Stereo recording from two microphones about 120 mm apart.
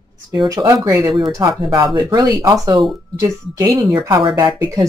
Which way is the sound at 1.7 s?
40° right (ahead or behind).